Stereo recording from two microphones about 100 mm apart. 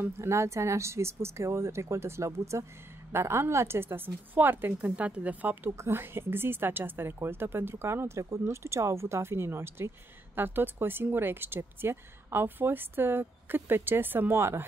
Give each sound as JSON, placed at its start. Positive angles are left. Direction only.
{"t": 0.0, "sound": "speech", "side_deg": -25}